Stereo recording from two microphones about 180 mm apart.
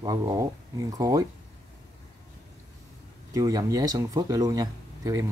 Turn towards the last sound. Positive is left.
turn(degrees=-20)  # may be behind; listen again after turning